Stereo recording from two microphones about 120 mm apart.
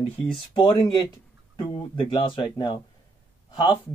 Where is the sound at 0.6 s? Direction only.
40° left (ahead or behind).